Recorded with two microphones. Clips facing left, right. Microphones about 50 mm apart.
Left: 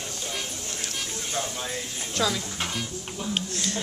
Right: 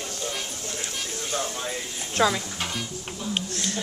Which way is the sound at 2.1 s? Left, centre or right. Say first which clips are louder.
Right 4 dB; right.